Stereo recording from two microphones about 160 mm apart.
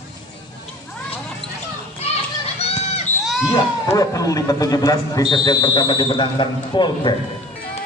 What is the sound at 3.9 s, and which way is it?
Speech, 20° left (ahead or behind).